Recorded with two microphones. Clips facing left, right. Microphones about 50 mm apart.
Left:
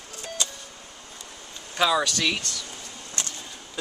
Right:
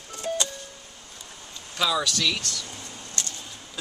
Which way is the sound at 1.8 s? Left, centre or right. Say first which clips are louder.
Left 3 dB; left.